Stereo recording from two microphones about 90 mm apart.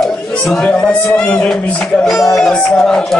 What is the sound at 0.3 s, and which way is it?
Speech, 10° left (ahead or behind).